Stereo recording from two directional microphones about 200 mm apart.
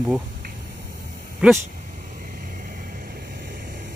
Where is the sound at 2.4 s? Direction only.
45° right (ahead or behind).